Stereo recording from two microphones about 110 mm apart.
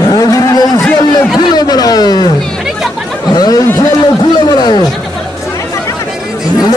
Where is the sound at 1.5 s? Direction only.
40° left (ahead or behind).